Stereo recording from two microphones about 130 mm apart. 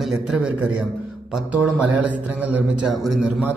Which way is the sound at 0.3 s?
5° right (ahead or behind).